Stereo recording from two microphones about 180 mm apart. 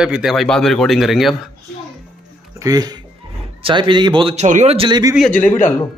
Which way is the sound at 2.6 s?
20° right (ahead or behind).